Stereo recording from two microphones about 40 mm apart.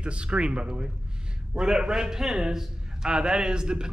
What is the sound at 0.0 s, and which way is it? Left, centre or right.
A man's voice, right.